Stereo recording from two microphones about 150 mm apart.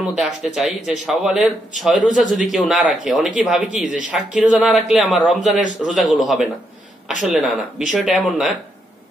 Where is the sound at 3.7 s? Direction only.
55° left (ahead or behind).